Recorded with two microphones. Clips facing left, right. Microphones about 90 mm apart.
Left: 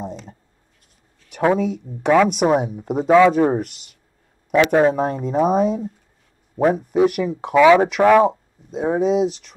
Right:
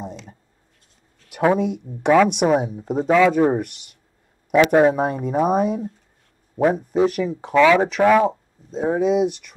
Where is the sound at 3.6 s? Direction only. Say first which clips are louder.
Left 1 dB; 55° right (ahead or behind).